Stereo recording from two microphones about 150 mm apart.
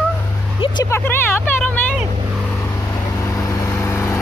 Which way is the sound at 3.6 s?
20° left (ahead or behind).